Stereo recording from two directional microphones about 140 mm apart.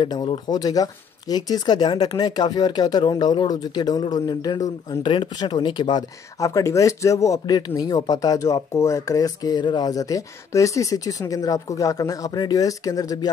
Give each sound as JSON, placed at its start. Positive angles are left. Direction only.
{"t": 0.0, "sound": "speech", "side_deg": 30}